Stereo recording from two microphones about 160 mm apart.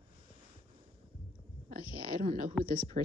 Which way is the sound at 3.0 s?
45° right (ahead or behind).